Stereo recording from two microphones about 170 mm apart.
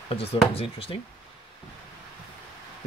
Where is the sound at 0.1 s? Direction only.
35° left (ahead or behind).